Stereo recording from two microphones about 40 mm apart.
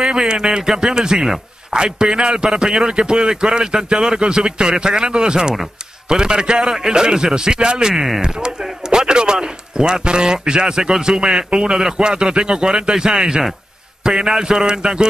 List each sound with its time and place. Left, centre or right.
0.5 s a man's voice: centre